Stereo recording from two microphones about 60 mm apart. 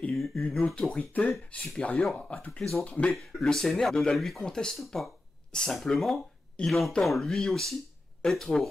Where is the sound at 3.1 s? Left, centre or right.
Centre.